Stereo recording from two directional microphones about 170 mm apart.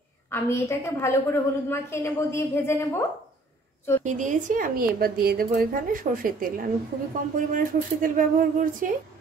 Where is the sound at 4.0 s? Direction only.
45° right (ahead or behind).